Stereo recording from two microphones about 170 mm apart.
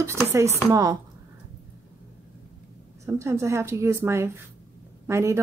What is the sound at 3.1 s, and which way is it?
A woman's voice, 15° right (ahead or behind).